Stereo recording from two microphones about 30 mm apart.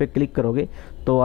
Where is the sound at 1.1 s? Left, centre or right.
Centre.